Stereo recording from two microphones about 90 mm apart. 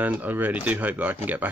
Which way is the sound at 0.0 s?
20° right (ahead or behind).